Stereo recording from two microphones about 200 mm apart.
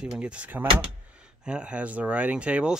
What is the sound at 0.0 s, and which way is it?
Speech, 5° right (ahead or behind).